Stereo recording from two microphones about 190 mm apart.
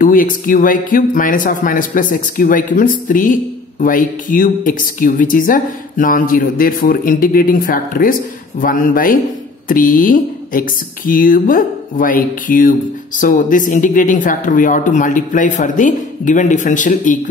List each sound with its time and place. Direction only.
0.0 s speech: 45° left (ahead or behind)